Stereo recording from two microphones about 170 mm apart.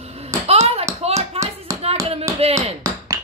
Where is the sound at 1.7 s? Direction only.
20° right (ahead or behind).